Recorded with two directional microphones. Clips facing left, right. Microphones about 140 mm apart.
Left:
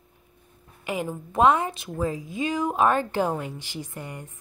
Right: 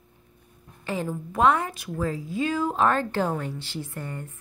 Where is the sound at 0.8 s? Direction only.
15° left (ahead or behind).